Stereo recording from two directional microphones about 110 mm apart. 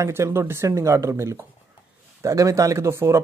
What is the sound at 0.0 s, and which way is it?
Speech, 25° right (ahead or behind).